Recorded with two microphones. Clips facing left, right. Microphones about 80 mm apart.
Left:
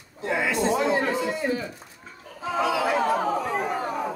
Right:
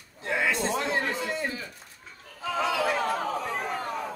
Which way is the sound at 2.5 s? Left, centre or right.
Centre.